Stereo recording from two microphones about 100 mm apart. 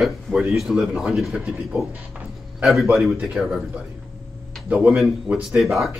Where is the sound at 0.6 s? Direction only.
5° right (ahead or behind).